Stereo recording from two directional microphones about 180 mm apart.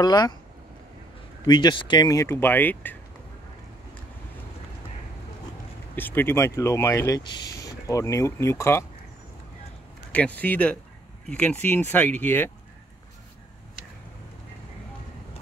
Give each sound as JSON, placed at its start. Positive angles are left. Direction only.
{"t": 0.0, "sound": "speech", "side_deg": 25}
{"t": 1.4, "sound": "speech", "side_deg": 25}
{"t": 5.9, "sound": "speech", "side_deg": 10}
{"t": 10.1, "sound": "speech", "side_deg": 10}